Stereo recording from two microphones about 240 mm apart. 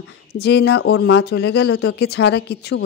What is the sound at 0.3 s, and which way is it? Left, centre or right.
Speech, left.